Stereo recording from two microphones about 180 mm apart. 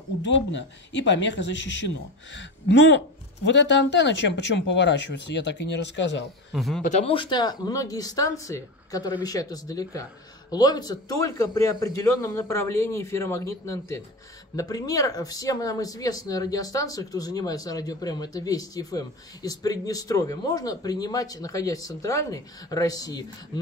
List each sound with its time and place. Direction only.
0.2 s speech: 90° left
6.5 s speech: centre (ahead or behind)
6.8 s a man's voice: 40° left (ahead or behind); by 23.6 s 20° left (ahead or behind)